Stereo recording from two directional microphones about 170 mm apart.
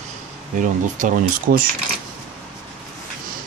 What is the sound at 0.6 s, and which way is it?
Speech, 50° right (ahead or behind).